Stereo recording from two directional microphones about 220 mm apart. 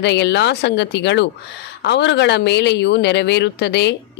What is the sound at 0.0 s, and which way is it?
Speech, 50° left (ahead or behind).